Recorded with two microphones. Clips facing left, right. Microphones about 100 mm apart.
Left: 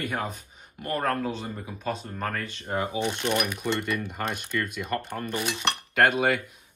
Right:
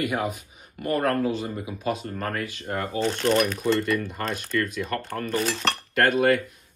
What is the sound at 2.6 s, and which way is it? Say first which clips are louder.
Cutlery: right 1 dB; 15° left (ahead or behind).